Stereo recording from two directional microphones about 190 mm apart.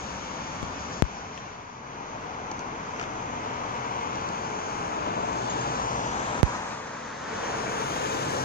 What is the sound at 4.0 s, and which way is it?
Vehicle, 50° left (ahead or behind).